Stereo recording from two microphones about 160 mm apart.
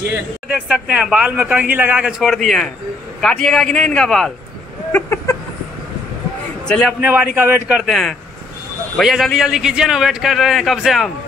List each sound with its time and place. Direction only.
0.5 s a man's voice: 5° right (ahead or behind)
4.9 s a sound: 15° left (ahead or behind)
6.7 s a man's voice: centre (ahead or behind)
7.0 s a man's voice: 10° right (ahead or behind)